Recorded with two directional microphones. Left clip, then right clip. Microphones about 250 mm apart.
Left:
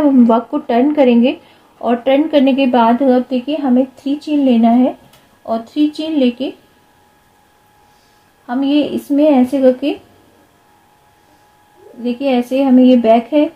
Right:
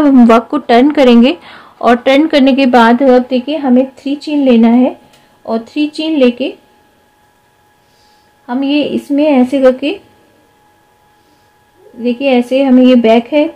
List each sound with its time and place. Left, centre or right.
0.0 s a woman's voice: right
8.5 s a woman's voice: right
12.0 s a woman's voice: right